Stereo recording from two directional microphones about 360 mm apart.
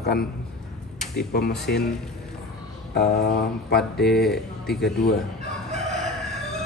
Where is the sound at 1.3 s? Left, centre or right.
Left.